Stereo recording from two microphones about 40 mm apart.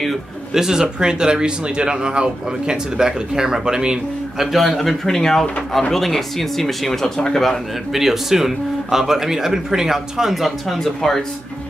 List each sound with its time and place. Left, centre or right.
0.6 s speech: centre
4.4 s speech: centre
7.9 s speech: centre
10.4 s speech: centre